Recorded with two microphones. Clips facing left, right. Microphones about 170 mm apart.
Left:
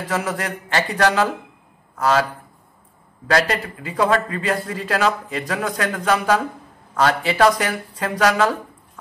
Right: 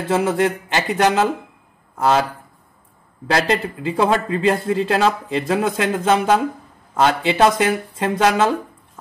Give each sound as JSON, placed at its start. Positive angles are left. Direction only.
{"t": 0.1, "sound": "a man's voice", "side_deg": -25}
{"t": 3.3, "sound": "a man's voice", "side_deg": -25}